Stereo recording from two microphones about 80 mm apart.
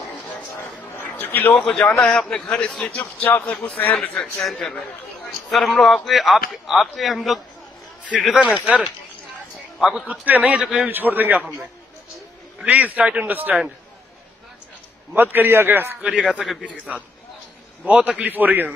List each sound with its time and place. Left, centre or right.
0.6 s a sound: left
1.6 s a man's voice: centre
4.5 s a man's voice: centre
10.0 s a man's voice: centre
12.6 s a man's voice: centre
15.3 s a man's voice: right
16.0 s speech: centre
16.3 s a man's voice: centre
16.6 s a man's voice: centre